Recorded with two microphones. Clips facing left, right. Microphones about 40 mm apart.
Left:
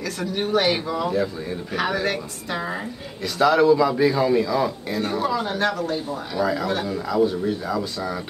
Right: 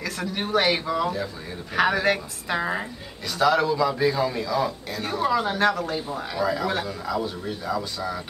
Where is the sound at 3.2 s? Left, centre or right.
Centre.